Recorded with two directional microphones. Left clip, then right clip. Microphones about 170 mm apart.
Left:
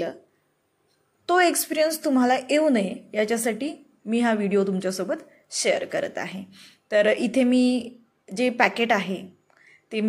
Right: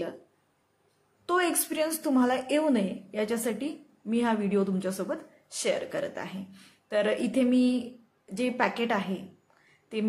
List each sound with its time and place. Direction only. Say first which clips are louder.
1.2 s a woman's voice: left 7 dB; 15° left (ahead or behind)